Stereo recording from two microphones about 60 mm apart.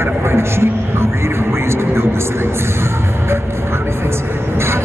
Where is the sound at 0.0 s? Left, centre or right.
Right.